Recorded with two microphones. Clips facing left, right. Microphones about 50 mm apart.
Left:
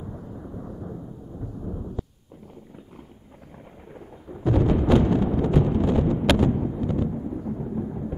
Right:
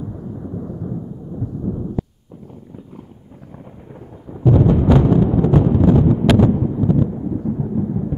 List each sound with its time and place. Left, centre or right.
0.0 s thunder: centre
4.3 s timpani: centre
5.7 s a sound: centre
6.5 s thunder: centre